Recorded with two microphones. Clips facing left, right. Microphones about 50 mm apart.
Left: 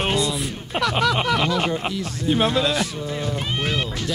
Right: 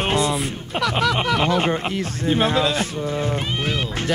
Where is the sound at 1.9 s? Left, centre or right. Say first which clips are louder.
Right 2 dB; right.